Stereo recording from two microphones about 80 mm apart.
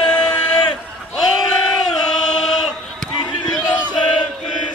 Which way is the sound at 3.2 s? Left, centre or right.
Left.